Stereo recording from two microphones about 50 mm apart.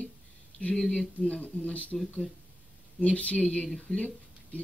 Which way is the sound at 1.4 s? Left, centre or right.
Left.